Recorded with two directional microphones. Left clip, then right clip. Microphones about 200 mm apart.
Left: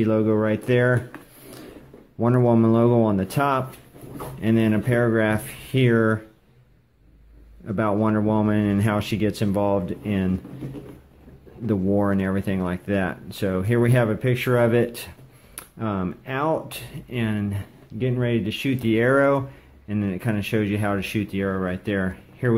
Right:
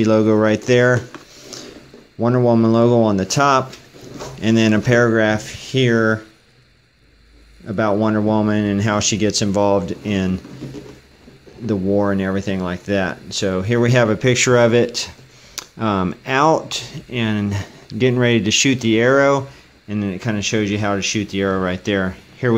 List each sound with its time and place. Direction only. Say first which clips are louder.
0.0 s speech: right 6 dB; 15° right (ahead or behind)
2.1 s speech: right 4 dB; 5° right (ahead or behind)
7.6 s speech: right 5 dB; 5° right (ahead or behind)
11.6 s speech: right 4 dB; 5° right (ahead or behind)